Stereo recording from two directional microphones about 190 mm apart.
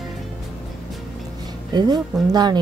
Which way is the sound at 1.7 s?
20° right (ahead or behind).